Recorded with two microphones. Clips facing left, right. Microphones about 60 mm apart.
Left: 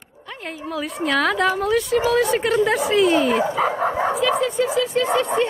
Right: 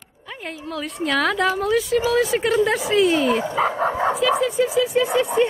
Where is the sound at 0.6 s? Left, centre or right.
Centre.